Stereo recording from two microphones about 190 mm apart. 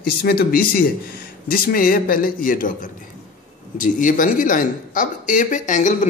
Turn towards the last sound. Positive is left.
turn(degrees=40)  # may be behind; listen again after turning